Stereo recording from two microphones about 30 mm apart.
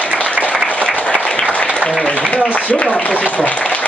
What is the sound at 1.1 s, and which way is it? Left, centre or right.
Applause, left.